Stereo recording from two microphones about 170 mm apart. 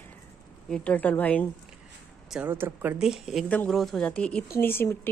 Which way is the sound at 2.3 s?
10° right (ahead or behind).